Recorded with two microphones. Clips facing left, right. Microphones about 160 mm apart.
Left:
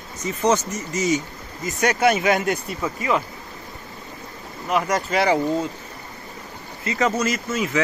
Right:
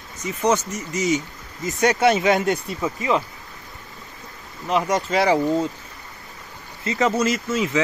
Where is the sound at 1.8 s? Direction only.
25° right (ahead or behind).